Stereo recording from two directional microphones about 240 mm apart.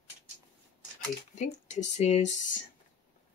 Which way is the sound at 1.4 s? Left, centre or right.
Left.